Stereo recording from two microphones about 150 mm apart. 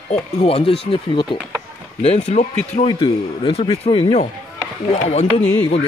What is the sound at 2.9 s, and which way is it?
Speech, 35° left (ahead or behind).